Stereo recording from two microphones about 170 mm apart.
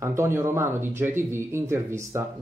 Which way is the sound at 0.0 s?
15° right (ahead or behind).